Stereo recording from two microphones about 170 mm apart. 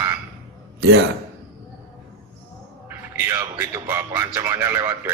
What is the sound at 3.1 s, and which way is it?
Music, 15° right (ahead or behind).